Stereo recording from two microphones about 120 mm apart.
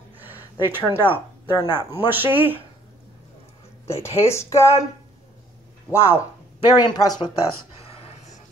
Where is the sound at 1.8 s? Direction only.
20° right (ahead or behind).